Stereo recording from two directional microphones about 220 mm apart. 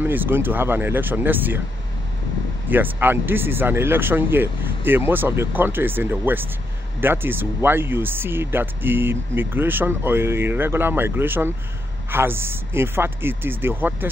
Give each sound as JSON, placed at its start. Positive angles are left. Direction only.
{"t": 0.0, "sound": "speech", "side_deg": -10}
{"t": 2.7, "sound": "speech", "side_deg": -10}